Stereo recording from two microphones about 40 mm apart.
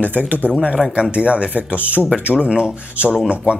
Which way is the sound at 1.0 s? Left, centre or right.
Right.